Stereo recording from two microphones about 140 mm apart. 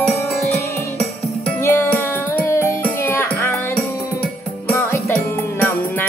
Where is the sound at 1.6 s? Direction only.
15° left (ahead or behind).